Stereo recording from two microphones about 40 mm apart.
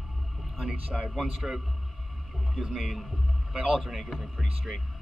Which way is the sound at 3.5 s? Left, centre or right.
Right.